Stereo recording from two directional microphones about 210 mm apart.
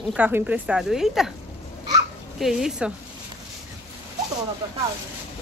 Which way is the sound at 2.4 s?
Centre (ahead or behind).